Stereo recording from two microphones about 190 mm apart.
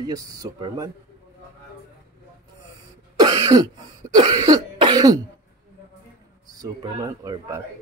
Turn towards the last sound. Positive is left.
turn(degrees=-20)  # may be behind; listen again after turning